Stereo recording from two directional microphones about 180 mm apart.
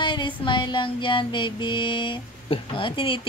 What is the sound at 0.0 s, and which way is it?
Music, 25° left (ahead or behind).